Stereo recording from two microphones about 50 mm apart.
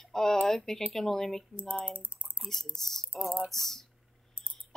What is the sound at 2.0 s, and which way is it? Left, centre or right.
Typing, right.